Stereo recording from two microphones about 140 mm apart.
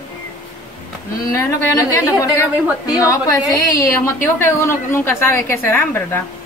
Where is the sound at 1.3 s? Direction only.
20° left (ahead or behind).